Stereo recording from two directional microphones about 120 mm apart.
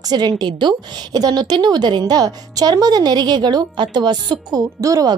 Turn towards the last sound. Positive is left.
turn(degrees=-30)  # may be behind; listen again after turning